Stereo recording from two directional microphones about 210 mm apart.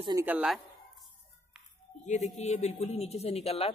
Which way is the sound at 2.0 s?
35° left (ahead or behind).